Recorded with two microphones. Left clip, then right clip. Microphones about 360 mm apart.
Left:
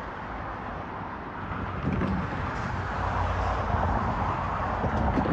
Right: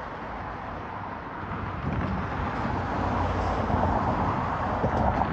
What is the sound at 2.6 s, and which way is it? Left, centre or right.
Vehicle, centre.